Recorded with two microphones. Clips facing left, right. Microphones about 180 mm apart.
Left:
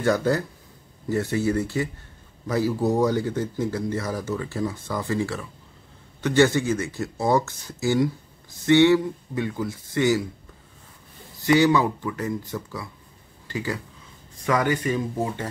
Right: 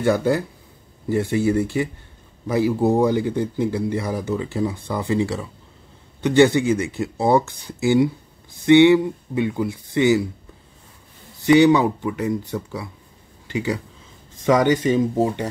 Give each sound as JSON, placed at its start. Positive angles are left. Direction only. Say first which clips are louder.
{"t": 0.0, "sound": "speech", "louder": "right 3 dB", "side_deg": -10}
{"t": 11.4, "sound": "speech", "louder": "right 5 dB", "side_deg": -20}